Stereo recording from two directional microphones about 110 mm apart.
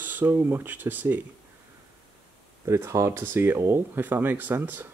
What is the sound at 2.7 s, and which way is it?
Speech, 25° right (ahead or behind).